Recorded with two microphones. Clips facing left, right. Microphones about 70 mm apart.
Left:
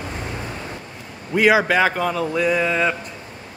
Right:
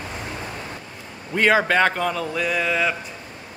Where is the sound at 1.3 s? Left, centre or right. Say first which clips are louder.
Left 2 dB; centre.